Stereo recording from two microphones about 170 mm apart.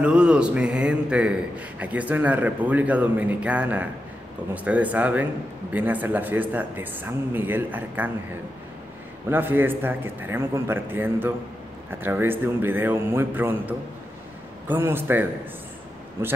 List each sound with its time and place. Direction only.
0.0 s a man's voice: 5° right (ahead or behind)
9.3 s a man's voice: 10° right (ahead or behind)